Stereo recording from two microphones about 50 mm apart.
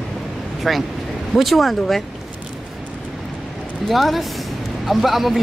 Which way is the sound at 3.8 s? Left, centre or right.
Centre.